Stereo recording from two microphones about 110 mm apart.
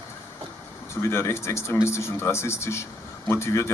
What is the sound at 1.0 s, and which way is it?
Speech, 25° left (ahead or behind).